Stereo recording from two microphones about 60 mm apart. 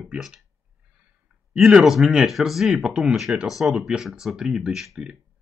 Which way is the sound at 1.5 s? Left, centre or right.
Centre.